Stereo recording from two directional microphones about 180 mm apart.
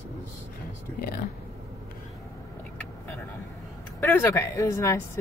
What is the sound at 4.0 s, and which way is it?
Speech, 15° left (ahead or behind).